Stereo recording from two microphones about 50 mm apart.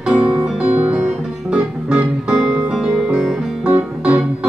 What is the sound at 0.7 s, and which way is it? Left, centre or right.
Music, right.